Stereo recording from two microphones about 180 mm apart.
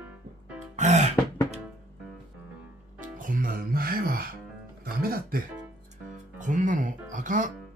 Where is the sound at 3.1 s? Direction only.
50° right (ahead or behind).